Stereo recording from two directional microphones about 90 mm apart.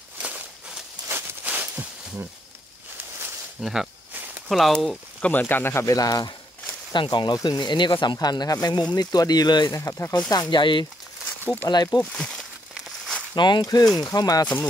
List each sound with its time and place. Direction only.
1.4 s a sound: 20° right (ahead or behind)
3.6 s speech: 5° right (ahead or behind)
5.2 s speech: 20° left (ahead or behind)
5.9 s speech: 45° left (ahead or behind)
6.9 s speech: 60° left (ahead or behind)
9.7 s speech: 35° left (ahead or behind)
10.5 s speech: 60° left (ahead or behind)
11.4 s speech: 20° left (ahead or behind)
11.7 s speech: 45° left (ahead or behind)
12.1 s speech: 5° left (ahead or behind)
13.3 s speech: 50° left (ahead or behind)